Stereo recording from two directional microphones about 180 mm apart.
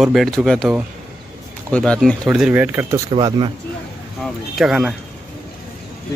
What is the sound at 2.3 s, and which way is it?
Speech, 5° right (ahead or behind).